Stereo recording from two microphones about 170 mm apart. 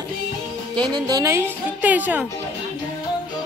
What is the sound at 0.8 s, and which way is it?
A woman's voice, 25° right (ahead or behind).